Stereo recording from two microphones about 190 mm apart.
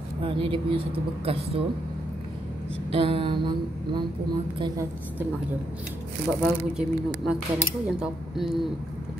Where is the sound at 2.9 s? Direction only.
30° right (ahead or behind).